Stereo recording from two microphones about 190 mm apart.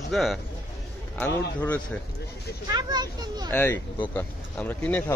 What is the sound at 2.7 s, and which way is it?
Speech, 20° right (ahead or behind).